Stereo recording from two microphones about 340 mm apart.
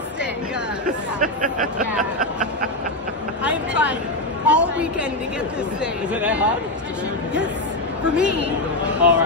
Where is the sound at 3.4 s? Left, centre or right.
Centre.